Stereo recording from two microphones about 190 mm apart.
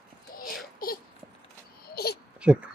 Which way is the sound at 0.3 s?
50° left (ahead or behind).